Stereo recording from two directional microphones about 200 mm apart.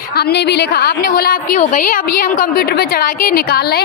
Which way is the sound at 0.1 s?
55° left (ahead or behind).